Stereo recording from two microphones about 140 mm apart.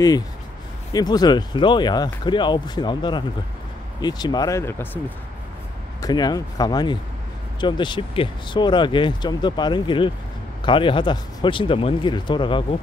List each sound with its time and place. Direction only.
0.9 s speech: 30° left (ahead or behind)
5.9 s speech: 30° left (ahead or behind)